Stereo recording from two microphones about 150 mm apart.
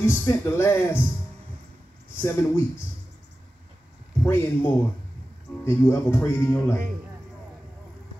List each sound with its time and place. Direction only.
0.0 s speech: 15° left (ahead or behind)
2.1 s speech: 15° left (ahead or behind)
4.2 s speech: 15° left (ahead or behind)